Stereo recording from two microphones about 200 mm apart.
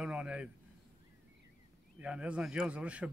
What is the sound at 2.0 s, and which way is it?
Speech, 5° right (ahead or behind).